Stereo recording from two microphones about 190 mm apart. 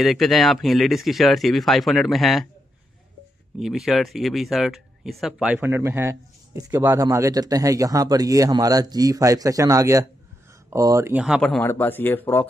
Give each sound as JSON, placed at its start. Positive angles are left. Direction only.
{"t": 0.0, "sound": "speech", "side_deg": 0}
{"t": 3.5, "sound": "speech", "side_deg": 0}